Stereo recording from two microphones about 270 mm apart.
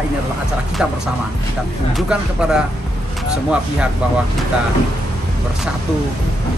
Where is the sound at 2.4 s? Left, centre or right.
Centre.